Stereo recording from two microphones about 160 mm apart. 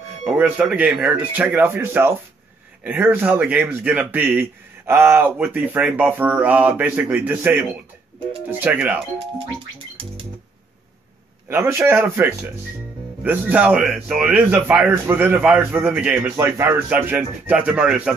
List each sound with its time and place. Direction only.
0.2 s speech: 10° right (ahead or behind)
11.4 s speech: 15° right (ahead or behind)